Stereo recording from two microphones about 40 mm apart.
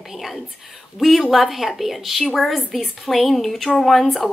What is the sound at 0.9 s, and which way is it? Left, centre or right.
A woman's voice, centre.